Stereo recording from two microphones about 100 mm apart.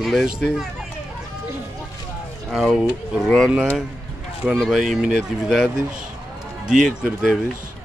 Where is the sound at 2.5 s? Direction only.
Centre (ahead or behind).